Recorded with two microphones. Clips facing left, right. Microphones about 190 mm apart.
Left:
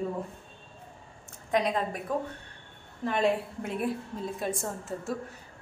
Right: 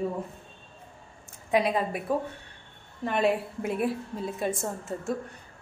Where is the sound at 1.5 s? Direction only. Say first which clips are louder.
Right 2 dB; 10° right (ahead or behind).